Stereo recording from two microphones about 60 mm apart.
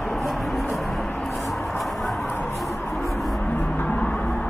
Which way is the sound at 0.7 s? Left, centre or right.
Centre.